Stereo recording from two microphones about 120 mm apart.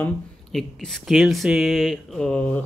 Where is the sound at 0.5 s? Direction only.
Centre (ahead or behind).